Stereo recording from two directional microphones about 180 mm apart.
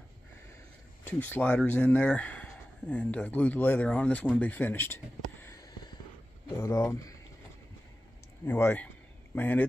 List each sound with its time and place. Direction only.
1.0 s speech: 10° left (ahead or behind)
8.5 s speech: 10° left (ahead or behind)